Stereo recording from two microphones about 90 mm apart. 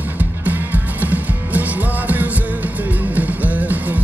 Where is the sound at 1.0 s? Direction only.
20° right (ahead or behind).